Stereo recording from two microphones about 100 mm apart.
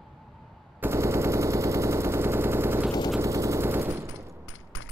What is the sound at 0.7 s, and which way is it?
Machine gun, 25° right (ahead or behind).